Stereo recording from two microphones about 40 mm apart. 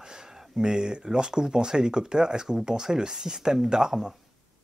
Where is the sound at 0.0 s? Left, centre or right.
Centre.